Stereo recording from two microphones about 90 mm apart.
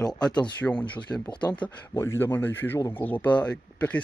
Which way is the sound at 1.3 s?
60° left (ahead or behind).